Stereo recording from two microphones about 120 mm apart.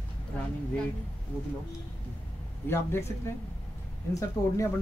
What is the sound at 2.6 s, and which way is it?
Speech, 20° left (ahead or behind).